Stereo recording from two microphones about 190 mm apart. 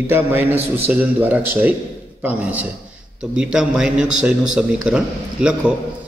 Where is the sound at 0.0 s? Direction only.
10° right (ahead or behind).